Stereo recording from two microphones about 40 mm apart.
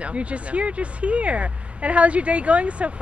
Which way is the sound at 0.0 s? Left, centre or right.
Right.